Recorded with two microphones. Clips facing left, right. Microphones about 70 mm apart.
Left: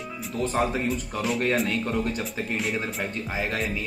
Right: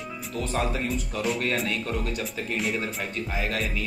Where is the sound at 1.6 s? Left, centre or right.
Left.